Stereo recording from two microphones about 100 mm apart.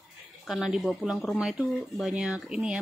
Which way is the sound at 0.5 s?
Centre (ahead or behind).